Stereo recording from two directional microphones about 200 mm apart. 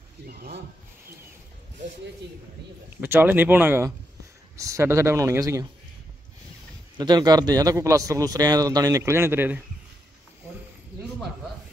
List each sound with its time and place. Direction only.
0.3 s a sound: 55° right (ahead or behind)
3.0 s a man's voice: 10° right (ahead or behind)
7.0 s a man's voice: 20° right (ahead or behind)